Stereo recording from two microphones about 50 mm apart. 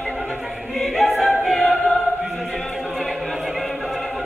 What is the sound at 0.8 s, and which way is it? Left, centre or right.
Choir, centre.